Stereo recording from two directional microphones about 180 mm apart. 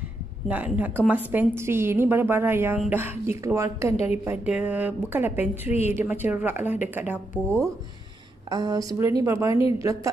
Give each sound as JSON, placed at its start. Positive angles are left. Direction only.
{"t": 0.5, "sound": "a woman's voice", "side_deg": -10}